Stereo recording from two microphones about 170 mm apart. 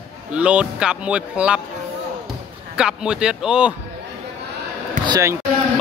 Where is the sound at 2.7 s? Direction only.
5° right (ahead or behind).